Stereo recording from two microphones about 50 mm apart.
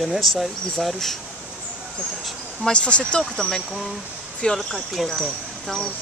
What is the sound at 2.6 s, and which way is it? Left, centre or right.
Speech, left.